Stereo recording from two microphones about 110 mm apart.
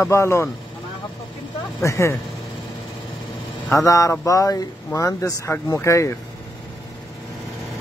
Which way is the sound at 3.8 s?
30° left (ahead or behind).